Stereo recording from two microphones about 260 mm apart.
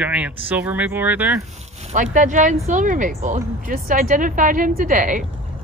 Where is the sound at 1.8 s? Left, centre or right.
Right.